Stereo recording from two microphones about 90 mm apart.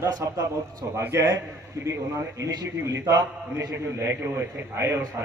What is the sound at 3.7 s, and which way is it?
A man's voice, 30° right (ahead or behind).